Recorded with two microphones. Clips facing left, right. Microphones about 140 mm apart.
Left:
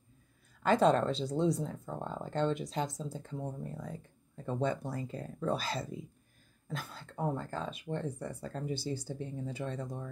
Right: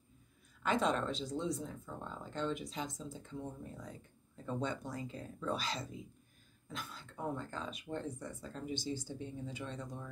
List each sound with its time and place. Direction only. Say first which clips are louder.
0.6 s speech: left 7 dB; 35° left (ahead or behind)